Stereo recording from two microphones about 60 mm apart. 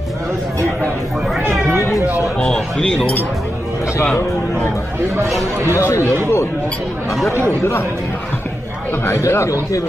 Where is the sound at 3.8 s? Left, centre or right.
Left.